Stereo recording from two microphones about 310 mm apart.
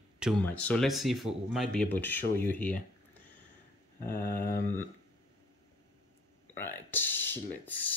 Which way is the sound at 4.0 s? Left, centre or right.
Left.